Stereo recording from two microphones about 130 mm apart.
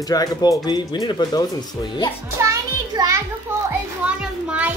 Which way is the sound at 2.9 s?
35° right (ahead or behind).